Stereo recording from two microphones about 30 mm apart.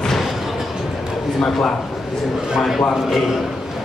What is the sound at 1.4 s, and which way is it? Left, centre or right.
Speech, centre.